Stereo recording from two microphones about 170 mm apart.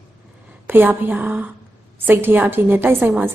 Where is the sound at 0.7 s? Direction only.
10° right (ahead or behind).